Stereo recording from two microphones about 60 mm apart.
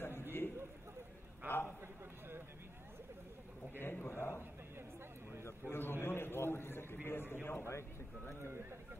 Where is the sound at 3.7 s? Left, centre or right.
Left.